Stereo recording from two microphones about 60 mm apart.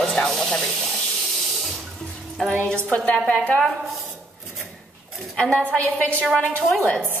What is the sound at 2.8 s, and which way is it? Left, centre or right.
Speech, left.